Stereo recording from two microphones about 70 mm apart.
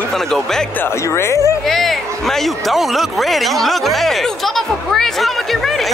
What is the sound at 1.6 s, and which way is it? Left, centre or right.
Speech, centre.